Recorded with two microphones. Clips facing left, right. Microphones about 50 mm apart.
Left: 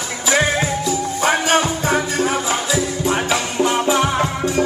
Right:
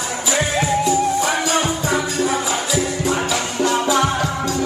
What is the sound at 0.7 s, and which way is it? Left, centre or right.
Music, right.